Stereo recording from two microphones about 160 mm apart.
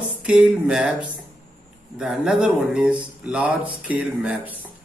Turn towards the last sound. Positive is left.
turn(degrees=-10)  # may be behind; listen again after turning